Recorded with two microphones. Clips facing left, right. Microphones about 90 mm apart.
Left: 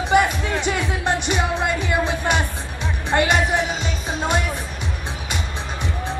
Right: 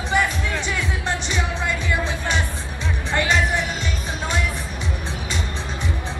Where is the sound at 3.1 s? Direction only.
35° left (ahead or behind).